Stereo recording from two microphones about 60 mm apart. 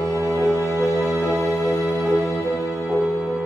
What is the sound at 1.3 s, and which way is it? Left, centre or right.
Music, centre.